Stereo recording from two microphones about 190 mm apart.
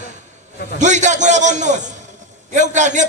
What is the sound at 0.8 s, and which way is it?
A man's voice, 40° right (ahead or behind).